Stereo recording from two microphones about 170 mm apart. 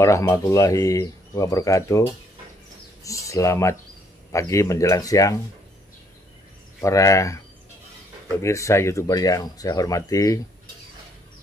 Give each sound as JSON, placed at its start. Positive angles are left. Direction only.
{"t": 0.0, "sound": "speech", "side_deg": 20}
{"t": 6.8, "sound": "speech", "side_deg": 20}
{"t": 8.4, "sound": "speech", "side_deg": 15}